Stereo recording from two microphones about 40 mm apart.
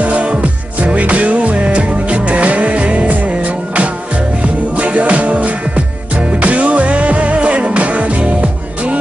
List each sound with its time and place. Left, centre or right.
0.0 s music: right